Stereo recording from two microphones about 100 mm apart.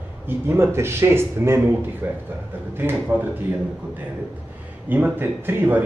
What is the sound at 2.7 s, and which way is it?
Speech, 20° right (ahead or behind).